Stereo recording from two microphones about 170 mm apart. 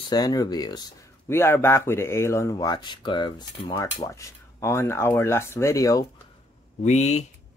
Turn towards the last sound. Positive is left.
turn(degrees=40)  # may be behind; listen again after turning